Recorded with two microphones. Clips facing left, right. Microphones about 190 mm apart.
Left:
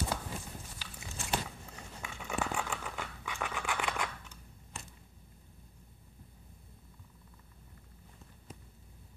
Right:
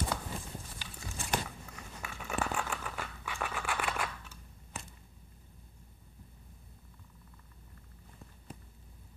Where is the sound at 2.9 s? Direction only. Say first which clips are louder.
Even; 20° left (ahead or behind).